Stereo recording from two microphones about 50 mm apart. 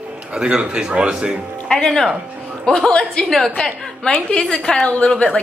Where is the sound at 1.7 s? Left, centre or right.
Centre.